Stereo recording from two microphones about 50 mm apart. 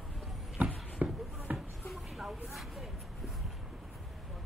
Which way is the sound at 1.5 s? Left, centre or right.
Centre.